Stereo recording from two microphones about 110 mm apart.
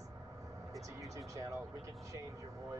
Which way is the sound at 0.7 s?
30° right (ahead or behind).